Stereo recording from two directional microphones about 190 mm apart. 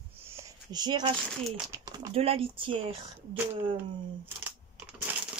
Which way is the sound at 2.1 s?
30° right (ahead or behind).